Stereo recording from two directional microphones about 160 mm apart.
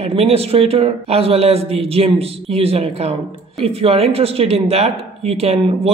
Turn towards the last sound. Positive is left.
turn(degrees=-40)  # may be behind; listen again after turning